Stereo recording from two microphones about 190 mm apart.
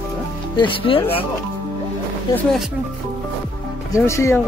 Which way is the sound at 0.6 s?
30° left (ahead or behind).